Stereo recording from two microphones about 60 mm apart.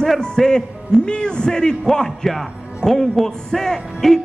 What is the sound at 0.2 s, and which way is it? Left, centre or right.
A man's voice, centre.